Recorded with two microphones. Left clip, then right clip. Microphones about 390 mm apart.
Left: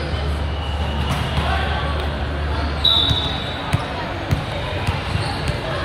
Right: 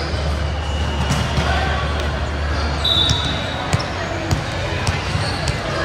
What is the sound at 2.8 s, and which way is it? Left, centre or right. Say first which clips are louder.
Basketball bounce: left 2 dB; centre.